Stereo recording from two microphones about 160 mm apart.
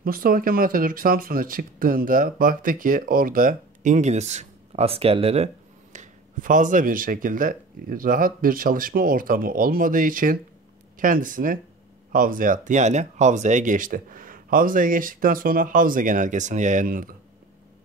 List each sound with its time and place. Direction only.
0.0 s speech: 65° right (ahead or behind); by 5.5 s 40° right (ahead or behind)
5.9 s speech: 55° right (ahead or behind)